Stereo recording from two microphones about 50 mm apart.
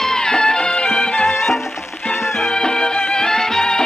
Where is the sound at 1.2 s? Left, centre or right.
Centre.